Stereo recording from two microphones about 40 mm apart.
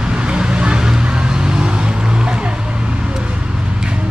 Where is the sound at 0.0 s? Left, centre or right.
Right.